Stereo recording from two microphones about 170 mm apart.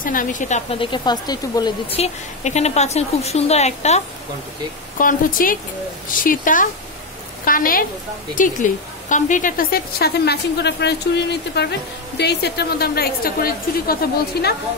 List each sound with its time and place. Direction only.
0.0 s a woman's voice: 55° left (ahead or behind); by 1.7 s 25° left (ahead or behind)
1.9 s a woman's voice: 40° left (ahead or behind)
4.9 s a woman's voice: 55° left (ahead or behind)